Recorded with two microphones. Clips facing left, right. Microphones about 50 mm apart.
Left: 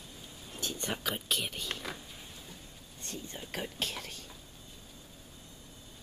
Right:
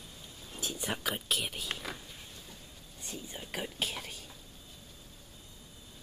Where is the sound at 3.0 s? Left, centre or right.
Centre.